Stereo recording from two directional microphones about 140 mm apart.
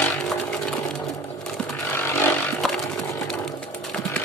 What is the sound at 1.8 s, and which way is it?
Chainsaw, 20° left (ahead or behind).